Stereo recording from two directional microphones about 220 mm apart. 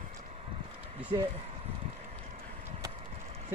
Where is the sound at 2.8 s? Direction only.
30° right (ahead or behind).